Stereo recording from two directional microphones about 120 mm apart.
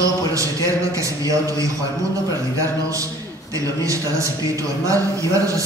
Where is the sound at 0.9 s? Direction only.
30° right (ahead or behind).